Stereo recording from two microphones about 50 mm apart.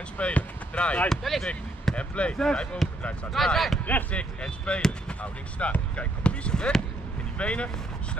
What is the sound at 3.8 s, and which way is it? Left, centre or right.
Speech, left.